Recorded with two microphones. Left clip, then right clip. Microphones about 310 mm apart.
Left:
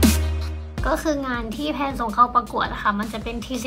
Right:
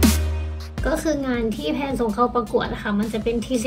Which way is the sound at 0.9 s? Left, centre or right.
Left.